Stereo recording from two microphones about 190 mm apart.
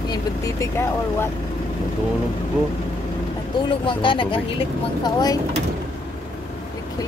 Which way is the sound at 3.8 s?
25° left (ahead or behind).